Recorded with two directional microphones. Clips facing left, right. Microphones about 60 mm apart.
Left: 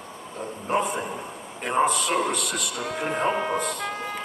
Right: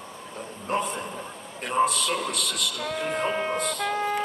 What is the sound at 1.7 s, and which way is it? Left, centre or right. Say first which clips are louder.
Speech: left 2 dB; left.